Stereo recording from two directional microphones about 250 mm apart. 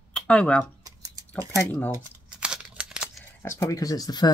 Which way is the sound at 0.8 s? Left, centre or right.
Centre.